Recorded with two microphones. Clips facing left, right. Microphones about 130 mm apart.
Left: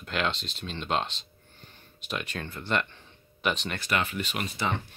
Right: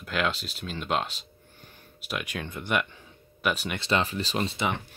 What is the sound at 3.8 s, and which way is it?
Speech, 30° right (ahead or behind).